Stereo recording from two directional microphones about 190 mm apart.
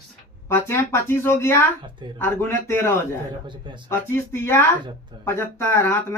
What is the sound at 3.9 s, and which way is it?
Speech, 10° left (ahead or behind).